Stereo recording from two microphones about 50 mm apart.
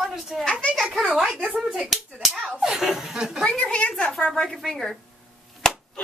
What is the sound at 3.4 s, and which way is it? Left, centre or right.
Speech, left.